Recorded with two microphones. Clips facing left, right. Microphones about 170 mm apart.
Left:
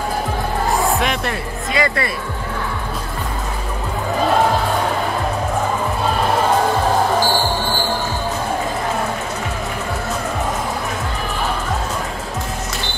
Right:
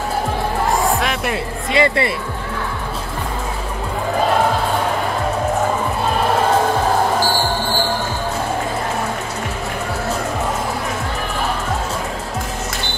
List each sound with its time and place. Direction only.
1.2 s speech: 25° right (ahead or behind)